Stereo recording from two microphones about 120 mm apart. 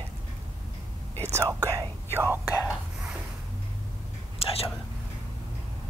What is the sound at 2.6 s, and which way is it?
Whispering, 5° right (ahead or behind).